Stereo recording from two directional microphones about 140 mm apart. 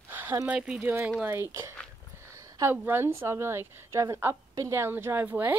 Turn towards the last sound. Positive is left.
turn(degrees=-15)  # may be behind; listen again after turning